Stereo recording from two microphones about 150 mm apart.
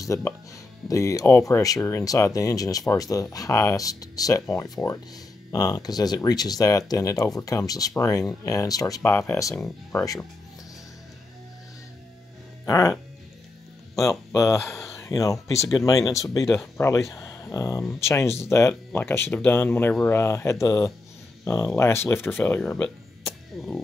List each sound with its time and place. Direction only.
0.0 s speech: 20° left (ahead or behind)
12.6 s speech: 20° left (ahead or behind)
13.9 s speech: 20° left (ahead or behind); by 23.8 s centre (ahead or behind)